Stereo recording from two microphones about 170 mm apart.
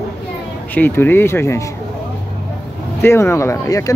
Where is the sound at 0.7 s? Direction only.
10° left (ahead or behind).